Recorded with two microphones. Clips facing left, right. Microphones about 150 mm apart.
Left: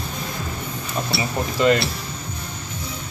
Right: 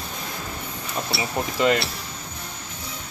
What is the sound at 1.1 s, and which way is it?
Speech, 15° right (ahead or behind).